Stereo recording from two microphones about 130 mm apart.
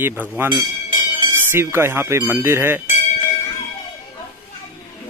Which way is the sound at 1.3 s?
20° right (ahead or behind).